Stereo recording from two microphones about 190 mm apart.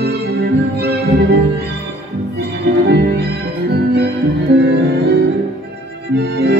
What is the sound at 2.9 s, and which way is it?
Music, 60° right (ahead or behind).